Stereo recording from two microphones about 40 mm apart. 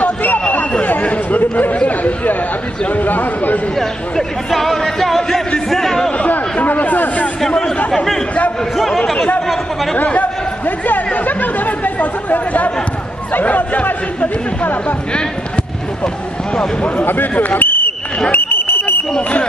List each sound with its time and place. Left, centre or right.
0.0 s a sound: left
1.0 s chatter: left
1.4 s chatter: left
2.9 s speech: left
3.7 s a sound: centre
5.7 s chatter: centre
6.6 s a sound: left
7.4 s chatter: centre
10.0 s a sound: left
11.1 s chatter: left
13.3 s speech: left
17.0 s speech: left
17.6 s basketball bounce: left
18.3 s smoke detector: left